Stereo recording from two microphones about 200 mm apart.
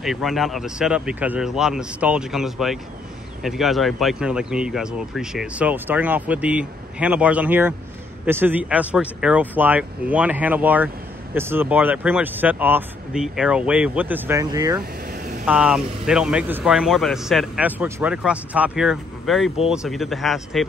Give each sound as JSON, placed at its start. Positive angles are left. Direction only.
{"t": 0.0, "sound": "speech", "side_deg": 0}
{"t": 15.0, "sound": "vehicle", "side_deg": -45}
{"t": 15.4, "sound": "speech", "side_deg": -5}